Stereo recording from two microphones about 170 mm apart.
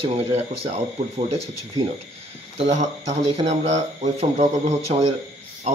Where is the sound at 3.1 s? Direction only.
40° right (ahead or behind).